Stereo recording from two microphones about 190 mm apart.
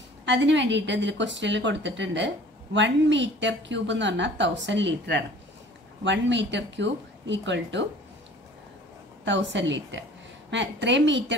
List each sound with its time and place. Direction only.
0.2 s a woman's voice: 70° right (ahead or behind)
9.2 s a woman's voice: 70° right (ahead or behind)